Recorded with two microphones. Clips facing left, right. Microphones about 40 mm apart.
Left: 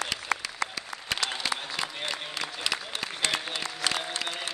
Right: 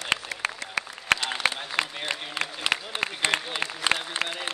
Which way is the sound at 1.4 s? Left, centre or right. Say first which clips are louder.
Right 7 dB; right.